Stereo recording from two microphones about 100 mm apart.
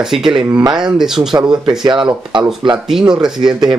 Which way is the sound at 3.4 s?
50° right (ahead or behind).